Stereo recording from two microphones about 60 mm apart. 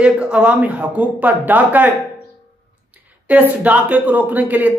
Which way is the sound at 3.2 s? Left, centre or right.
Right.